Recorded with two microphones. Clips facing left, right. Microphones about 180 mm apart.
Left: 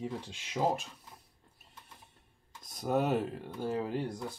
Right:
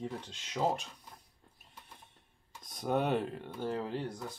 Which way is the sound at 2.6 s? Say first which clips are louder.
Left 1 dB; centre (ahead or behind).